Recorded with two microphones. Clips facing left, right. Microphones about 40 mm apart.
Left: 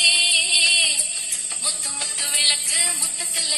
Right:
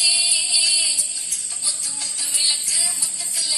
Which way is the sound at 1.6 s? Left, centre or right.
Left.